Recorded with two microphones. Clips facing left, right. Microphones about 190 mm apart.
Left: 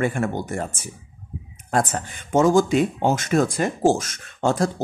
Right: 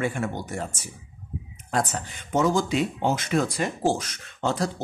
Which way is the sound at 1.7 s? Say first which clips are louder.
Left 4 dB; 50° left (ahead or behind).